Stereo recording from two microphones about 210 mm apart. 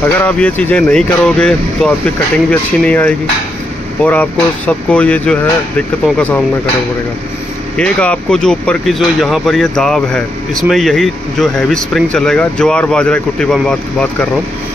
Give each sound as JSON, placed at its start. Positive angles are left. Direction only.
{"t": 0.2, "sound": "speech", "side_deg": 5}
{"t": 7.7, "sound": "speech", "side_deg": 5}